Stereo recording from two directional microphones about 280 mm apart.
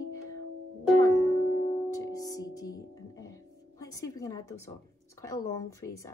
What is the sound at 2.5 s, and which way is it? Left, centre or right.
Music, left.